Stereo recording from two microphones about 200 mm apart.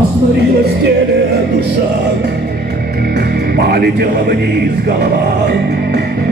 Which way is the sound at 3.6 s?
50° right (ahead or behind).